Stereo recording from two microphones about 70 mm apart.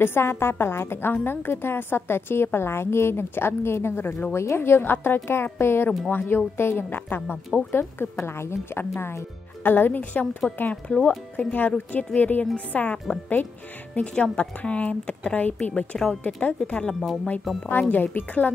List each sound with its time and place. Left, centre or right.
0.0 s a woman's voice: left
5.9 s a woman's voice: left
17.0 s speech: centre
17.6 s speech: left